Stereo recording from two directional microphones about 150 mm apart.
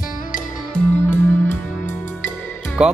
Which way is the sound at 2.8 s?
5° right (ahead or behind).